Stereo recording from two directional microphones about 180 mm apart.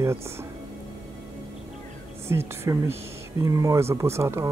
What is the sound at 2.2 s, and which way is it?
Speech, 15° right (ahead or behind).